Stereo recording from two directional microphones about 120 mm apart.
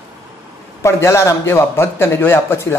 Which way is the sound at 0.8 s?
25° left (ahead or behind).